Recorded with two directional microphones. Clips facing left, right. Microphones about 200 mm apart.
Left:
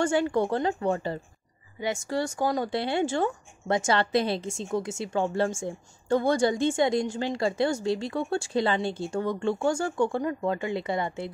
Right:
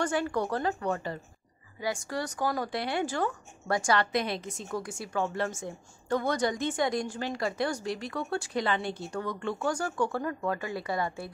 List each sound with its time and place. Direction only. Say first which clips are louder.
0.0 s speech: left 5 dB; 25° left (ahead or behind)